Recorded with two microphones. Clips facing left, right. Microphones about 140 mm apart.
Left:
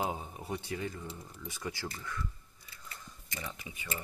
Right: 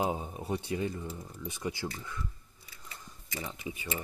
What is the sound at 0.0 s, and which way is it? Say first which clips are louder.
Speech: right 4 dB; 20° right (ahead or behind).